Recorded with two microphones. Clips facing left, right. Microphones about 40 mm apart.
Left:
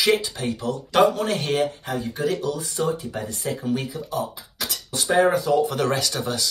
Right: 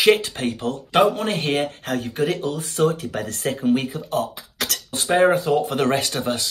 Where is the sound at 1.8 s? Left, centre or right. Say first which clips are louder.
Right 2 dB; right.